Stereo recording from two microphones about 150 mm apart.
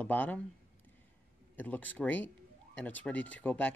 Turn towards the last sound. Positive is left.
turn(degrees=10)  # may be behind; listen again after turning